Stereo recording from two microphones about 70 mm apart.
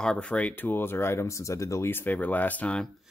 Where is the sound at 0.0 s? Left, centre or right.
Centre; by 1.9 s left.